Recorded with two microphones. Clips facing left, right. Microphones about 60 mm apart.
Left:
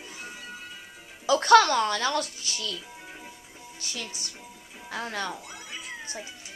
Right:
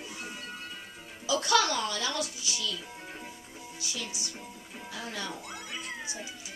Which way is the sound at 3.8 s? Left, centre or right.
Left.